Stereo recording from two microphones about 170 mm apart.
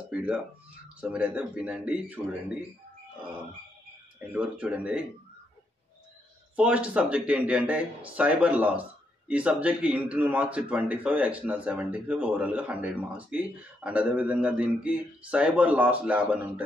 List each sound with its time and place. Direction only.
0.1 s speech: 5° right (ahead or behind)
4.3 s speech: 5° right (ahead or behind)
6.5 s speech: 10° right (ahead or behind)